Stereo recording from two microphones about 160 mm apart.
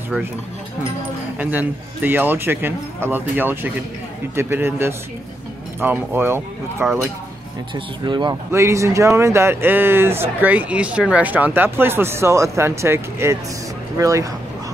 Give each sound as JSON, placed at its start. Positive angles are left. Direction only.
{"t": 1.4, "sound": "speech", "side_deg": -10}
{"t": 7.7, "sound": "speech", "side_deg": -30}
{"t": 8.5, "sound": "speech", "side_deg": -20}